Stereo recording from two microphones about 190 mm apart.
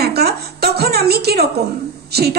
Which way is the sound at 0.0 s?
55° right (ahead or behind).